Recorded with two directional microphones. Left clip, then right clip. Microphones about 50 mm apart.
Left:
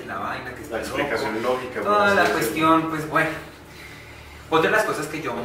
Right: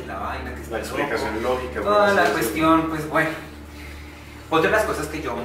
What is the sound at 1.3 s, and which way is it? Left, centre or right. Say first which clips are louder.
A man's voice: even; centre.